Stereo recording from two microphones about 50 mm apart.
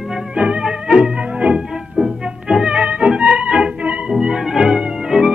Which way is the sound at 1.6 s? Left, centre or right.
Centre.